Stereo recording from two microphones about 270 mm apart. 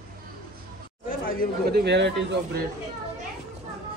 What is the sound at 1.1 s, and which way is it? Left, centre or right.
Chatter, left.